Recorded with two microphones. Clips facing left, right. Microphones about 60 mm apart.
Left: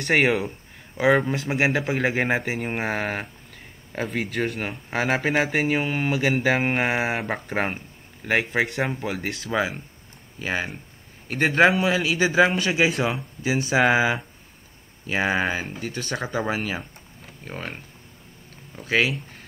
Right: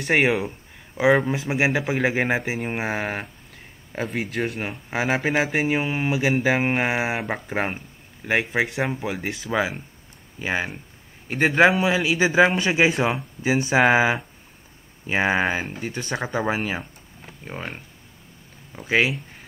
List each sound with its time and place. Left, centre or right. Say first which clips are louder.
0.0 s speech: even; centre
11.8 s speech: right 1 dB; centre
13.8 s speech: right 2 dB; centre
17.5 s speech: right 1 dB; centre